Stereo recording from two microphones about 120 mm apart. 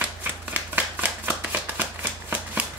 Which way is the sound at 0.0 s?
15° right (ahead or behind).